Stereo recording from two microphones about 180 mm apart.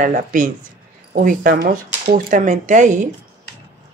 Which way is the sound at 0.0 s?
45° right (ahead or behind).